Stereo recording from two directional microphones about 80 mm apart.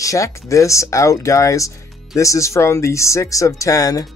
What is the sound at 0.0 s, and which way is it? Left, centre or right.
Speech, left.